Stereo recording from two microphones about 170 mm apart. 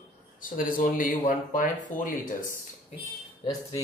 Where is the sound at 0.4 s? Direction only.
55° left (ahead or behind).